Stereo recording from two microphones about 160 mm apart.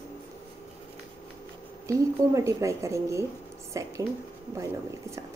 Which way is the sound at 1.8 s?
20° right (ahead or behind).